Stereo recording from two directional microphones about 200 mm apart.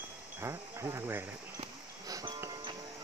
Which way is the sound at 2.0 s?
15° right (ahead or behind).